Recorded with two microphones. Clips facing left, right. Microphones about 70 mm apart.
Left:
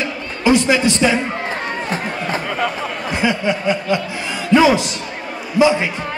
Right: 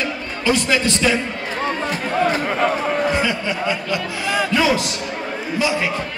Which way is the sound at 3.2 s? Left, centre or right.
Centre.